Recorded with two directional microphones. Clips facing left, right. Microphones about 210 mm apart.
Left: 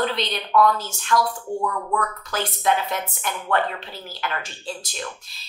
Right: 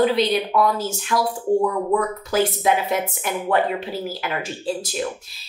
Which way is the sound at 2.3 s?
5° right (ahead or behind).